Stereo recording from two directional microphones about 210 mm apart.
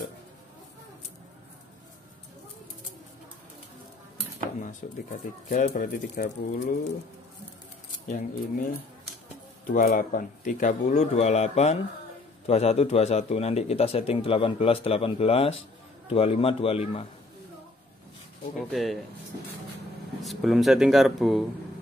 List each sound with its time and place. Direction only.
4.8 s speech: 40° left (ahead or behind)
8.1 s a man's voice: 40° left (ahead or behind)
18.7 s speech: centre (ahead or behind)
20.2 s speech: centre (ahead or behind)